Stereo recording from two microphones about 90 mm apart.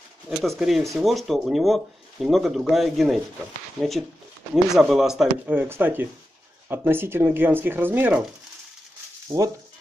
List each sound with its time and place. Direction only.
0.3 s speech: centre (ahead or behind)
5.5 s speech: 20° right (ahead or behind)
9.3 s speech: 35° right (ahead or behind)